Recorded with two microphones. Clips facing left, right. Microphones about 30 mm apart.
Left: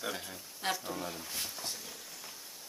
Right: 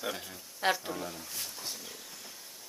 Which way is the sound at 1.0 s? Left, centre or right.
Centre.